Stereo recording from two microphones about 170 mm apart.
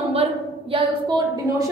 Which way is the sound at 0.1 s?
35° right (ahead or behind).